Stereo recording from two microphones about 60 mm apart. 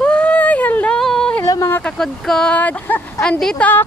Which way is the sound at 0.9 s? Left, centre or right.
Centre.